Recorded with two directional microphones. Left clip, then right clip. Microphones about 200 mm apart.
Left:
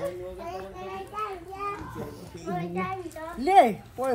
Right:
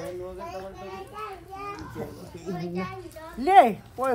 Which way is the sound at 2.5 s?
25° left (ahead or behind).